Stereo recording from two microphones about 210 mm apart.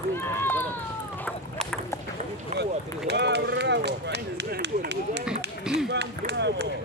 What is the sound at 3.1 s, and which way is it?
Run, 55° right (ahead or behind).